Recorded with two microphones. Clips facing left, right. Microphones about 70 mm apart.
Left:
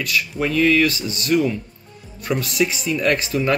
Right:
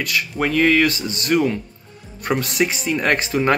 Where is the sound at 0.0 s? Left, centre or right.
Right.